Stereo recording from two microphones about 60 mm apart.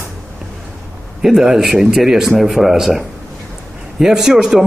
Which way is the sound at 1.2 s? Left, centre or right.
Centre.